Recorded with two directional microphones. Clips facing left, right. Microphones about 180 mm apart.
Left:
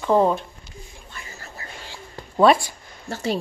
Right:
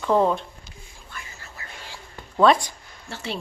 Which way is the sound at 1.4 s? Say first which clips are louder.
Left 3 dB; 35° left (ahead or behind).